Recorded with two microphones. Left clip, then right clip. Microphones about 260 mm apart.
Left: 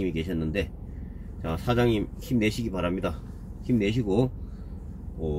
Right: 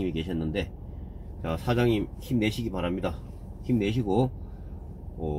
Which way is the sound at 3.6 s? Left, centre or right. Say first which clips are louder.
Left 1 dB; centre.